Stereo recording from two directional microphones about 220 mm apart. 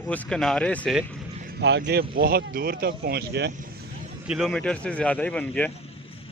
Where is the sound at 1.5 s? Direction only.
50° right (ahead or behind).